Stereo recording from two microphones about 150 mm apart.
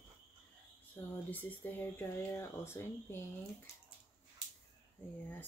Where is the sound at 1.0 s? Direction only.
15° left (ahead or behind).